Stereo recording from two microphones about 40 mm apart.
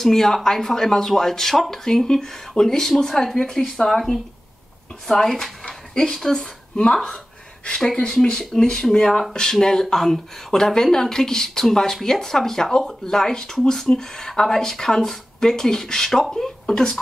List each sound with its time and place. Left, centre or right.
0.0 s speech: centre
5.7 s a sound: left
6.1 s speech: centre
9.9 s speech: centre